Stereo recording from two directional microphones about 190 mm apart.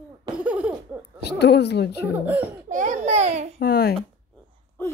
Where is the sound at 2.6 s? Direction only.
40° right (ahead or behind).